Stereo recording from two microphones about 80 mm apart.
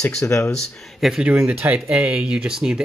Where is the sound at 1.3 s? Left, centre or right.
Right.